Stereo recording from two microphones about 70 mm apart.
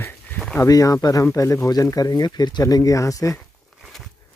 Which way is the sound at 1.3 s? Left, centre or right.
Left.